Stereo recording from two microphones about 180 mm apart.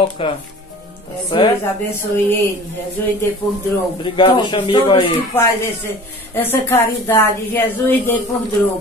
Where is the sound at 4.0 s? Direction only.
25° left (ahead or behind).